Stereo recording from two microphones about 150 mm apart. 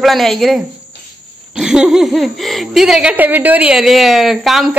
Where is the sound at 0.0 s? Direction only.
Centre (ahead or behind).